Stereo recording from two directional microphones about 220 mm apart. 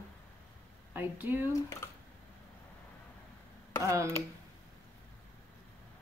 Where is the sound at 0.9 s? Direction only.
10° right (ahead or behind).